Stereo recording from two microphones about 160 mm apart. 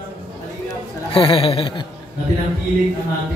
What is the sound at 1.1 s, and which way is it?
Speech, 35° left (ahead or behind).